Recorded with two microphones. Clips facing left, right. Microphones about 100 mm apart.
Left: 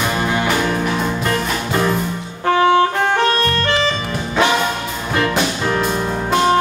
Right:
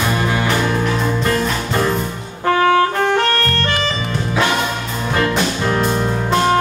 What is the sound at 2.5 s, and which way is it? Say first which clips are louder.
Saxophone: even; 25° left (ahead or behind).